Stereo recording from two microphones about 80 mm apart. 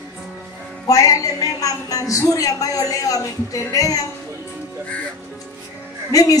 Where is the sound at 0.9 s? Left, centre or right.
Left.